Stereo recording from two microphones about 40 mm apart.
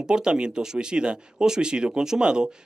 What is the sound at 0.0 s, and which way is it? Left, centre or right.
Speech, centre.